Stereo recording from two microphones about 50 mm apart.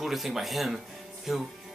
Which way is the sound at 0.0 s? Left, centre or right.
Centre.